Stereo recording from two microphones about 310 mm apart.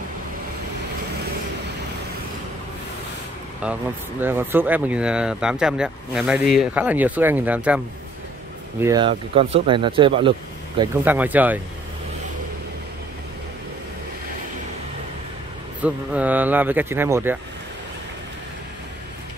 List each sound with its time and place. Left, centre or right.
3.6 s speech: centre
8.8 s speech: centre
10.8 s speech: centre
15.8 s speech: centre